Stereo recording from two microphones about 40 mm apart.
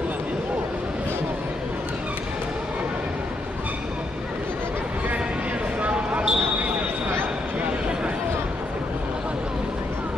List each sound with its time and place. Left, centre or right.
5.8 s basketball bounce: right